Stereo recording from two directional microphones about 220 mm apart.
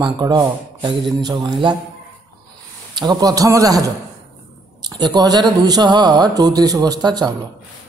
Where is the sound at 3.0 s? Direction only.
20° right (ahead or behind).